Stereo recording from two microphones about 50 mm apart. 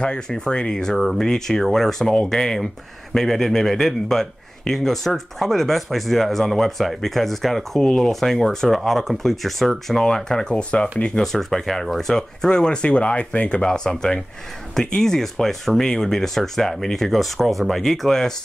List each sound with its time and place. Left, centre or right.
0.0 s a man's voice: centre
11.3 s speech: centre; by 13.7 s left
13.7 s a man's voice: centre